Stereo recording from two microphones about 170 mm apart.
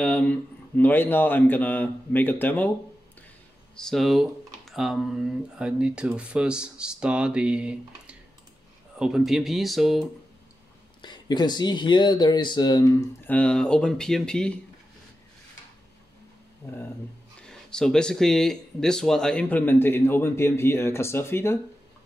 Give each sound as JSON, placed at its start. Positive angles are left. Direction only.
{"t": 0.0, "sound": "speech", "side_deg": 5}
{"t": 3.7, "sound": "speech", "side_deg": 0}
{"t": 11.0, "sound": "speech", "side_deg": 25}
{"t": 13.2, "sound": "speech", "side_deg": 10}
{"t": 17.4, "sound": "speech", "side_deg": 5}